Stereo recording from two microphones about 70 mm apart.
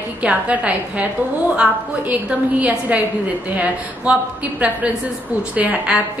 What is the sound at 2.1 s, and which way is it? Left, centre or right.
A woman's voice, right.